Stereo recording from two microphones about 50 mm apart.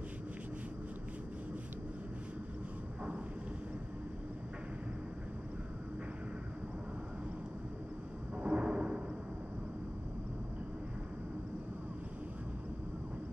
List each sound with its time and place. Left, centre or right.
8.4 s timpani: right